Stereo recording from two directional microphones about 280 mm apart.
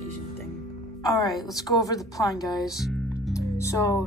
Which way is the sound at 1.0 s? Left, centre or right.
Centre.